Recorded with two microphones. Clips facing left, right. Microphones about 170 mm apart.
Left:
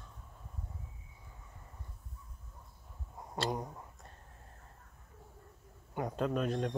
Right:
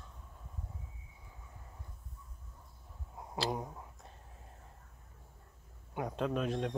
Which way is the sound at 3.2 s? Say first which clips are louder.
Even; 5° right (ahead or behind).